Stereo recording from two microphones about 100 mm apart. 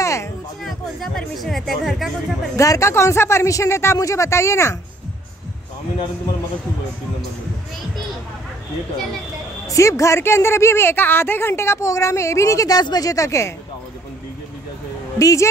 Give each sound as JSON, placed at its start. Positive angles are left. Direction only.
{"t": 0.0, "sound": "a sound", "side_deg": 30}
{"t": 0.7, "sound": "speech", "side_deg": 0}
{"t": 2.5, "sound": "speech", "side_deg": 30}
{"t": 9.7, "sound": "speech", "side_deg": 35}
{"t": 15.1, "sound": "a woman's voice", "side_deg": 35}